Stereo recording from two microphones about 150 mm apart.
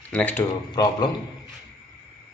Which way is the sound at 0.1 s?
10° left (ahead or behind).